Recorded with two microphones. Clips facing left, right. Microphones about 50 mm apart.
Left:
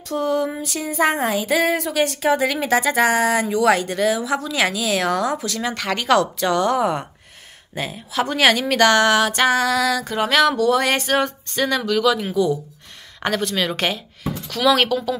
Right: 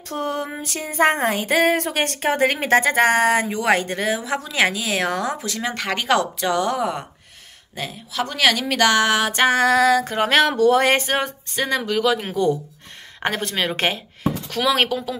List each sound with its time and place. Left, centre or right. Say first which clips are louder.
0.1 s a sound: left 4 dB; right
3.4 s speech: left 2 dB; right; by 6.8 s centre
6.8 s speech: left 3 dB; centre
7.7 s speech: left 4 dB; centre
8.6 s a sound: left 2 dB; centre; by 9.6 s right
9.6 s speech: right 3 dB; right
12.2 s a sound: left 1 dB; right
13.2 s speech: left 1 dB; right
14.6 s speech: left 3 dB; centre